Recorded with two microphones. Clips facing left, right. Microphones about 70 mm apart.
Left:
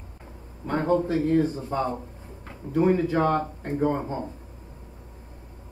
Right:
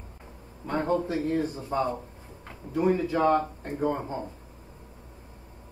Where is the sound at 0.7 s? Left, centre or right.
Left.